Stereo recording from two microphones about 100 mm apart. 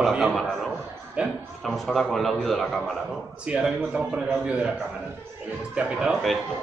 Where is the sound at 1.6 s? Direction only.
Centre (ahead or behind).